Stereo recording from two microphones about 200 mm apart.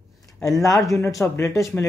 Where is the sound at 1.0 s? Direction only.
15° left (ahead or behind).